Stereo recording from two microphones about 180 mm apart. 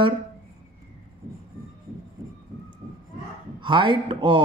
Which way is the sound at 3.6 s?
25° right (ahead or behind).